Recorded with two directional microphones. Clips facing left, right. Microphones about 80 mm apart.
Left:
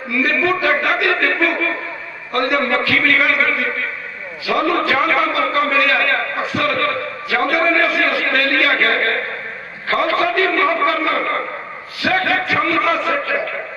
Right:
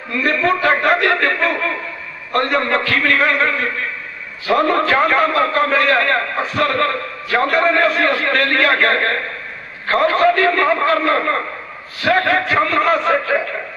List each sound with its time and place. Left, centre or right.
0.2 s a man's voice: right